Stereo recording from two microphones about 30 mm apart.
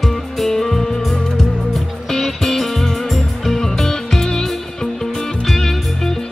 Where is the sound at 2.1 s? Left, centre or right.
Centre.